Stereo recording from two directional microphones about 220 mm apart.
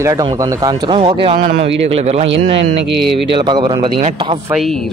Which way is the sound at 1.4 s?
45° right (ahead or behind).